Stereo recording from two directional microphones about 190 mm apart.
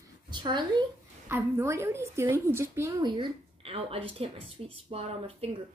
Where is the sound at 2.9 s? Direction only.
25° right (ahead or behind).